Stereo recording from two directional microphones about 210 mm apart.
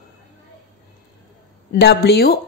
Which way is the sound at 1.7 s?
50° left (ahead or behind).